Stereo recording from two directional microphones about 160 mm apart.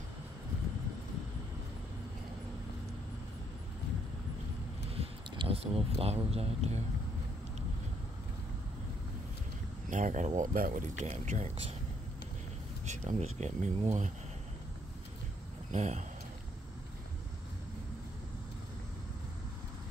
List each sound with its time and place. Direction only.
4.9 s a sound: 35° right (ahead or behind)
9.8 s speech: 50° right (ahead or behind)
12.8 s speech: 45° right (ahead or behind)
15.7 s speech: 45° right (ahead or behind)